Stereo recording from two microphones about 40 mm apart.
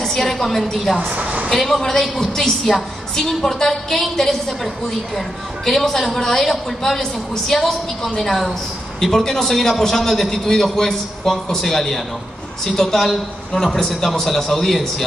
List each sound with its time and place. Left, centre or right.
0.0 s a woman's voice: centre
1.1 s a sound: right
1.5 s a man's voice: centre